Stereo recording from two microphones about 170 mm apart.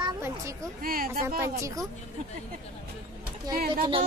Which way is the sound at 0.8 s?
60° right (ahead or behind).